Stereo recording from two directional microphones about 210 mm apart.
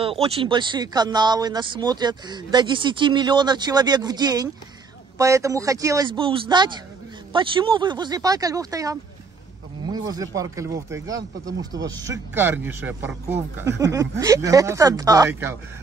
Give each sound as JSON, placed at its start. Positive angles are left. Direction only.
{"t": 0.0, "sound": "speech", "side_deg": -25}